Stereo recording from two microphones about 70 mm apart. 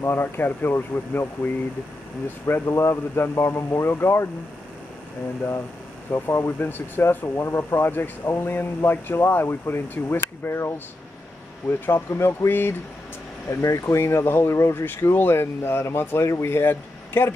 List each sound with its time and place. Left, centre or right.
0.0 s speech: left
6.0 s speech: left
11.8 s speech: left
13.5 s speech: left